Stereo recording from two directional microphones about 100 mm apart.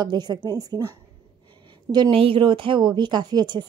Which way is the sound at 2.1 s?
65° right (ahead or behind).